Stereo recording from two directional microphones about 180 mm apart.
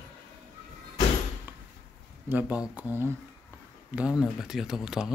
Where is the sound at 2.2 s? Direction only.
10° right (ahead or behind).